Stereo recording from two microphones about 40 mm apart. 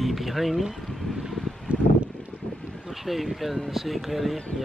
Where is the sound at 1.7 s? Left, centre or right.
Right.